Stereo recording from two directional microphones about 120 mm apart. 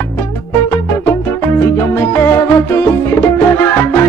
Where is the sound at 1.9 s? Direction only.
20° left (ahead or behind).